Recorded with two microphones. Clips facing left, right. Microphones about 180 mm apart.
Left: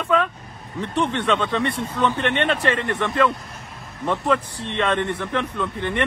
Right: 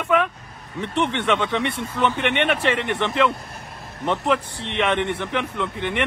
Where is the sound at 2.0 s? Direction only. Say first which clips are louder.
Even; 15° right (ahead or behind).